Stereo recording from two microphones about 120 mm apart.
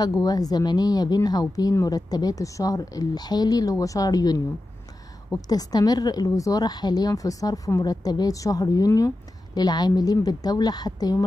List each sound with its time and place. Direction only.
0.0 s a woman's voice: 30° left (ahead or behind)
5.5 s a woman's voice: 30° left (ahead or behind)